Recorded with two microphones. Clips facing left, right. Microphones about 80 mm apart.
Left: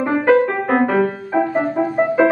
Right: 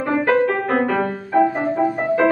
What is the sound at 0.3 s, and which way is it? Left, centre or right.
Music, centre.